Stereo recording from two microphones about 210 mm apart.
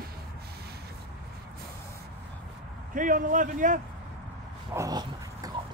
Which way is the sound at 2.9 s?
40° right (ahead or behind).